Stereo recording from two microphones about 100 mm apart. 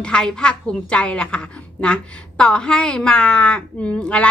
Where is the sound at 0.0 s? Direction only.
10° left (ahead or behind).